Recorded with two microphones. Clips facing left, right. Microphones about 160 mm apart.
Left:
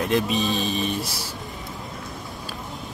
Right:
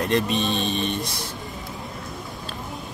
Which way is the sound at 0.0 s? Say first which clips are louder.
Even; centre (ahead or behind).